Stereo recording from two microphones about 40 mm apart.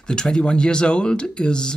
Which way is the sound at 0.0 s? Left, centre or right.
Centre.